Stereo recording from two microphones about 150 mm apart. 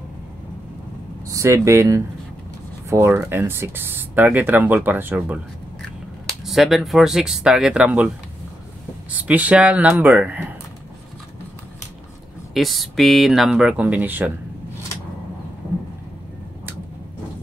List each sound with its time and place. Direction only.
1.3 s speech: 20° right (ahead or behind)
6.4 s speech: centre (ahead or behind)
9.1 s speech: 10° right (ahead or behind)
12.5 s speech: centre (ahead or behind)